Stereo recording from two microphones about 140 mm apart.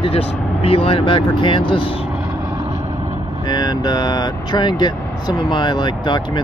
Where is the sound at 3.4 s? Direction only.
30° left (ahead or behind).